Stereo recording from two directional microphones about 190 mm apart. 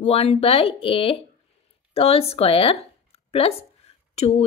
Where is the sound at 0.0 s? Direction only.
35° left (ahead or behind).